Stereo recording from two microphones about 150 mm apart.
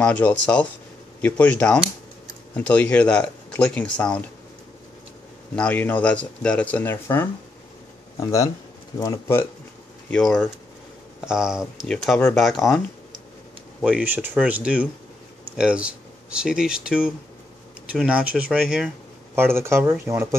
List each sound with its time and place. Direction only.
0.0 s speech: 10° left (ahead or behind)
5.6 s speech: 10° left (ahead or behind)
10.0 s speech: 5° left (ahead or behind); by 20.3 s 15° right (ahead or behind)